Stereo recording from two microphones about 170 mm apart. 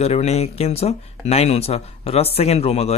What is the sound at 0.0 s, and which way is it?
Speech, 40° left (ahead or behind).